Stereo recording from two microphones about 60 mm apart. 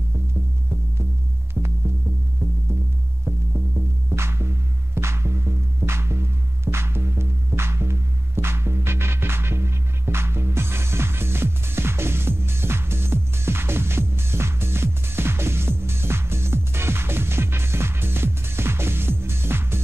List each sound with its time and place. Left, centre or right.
4.1 s music: right